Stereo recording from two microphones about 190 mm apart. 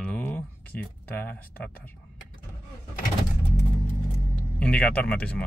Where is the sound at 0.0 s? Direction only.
5° left (ahead or behind).